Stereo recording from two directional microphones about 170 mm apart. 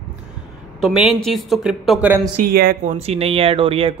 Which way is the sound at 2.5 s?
65° right (ahead or behind).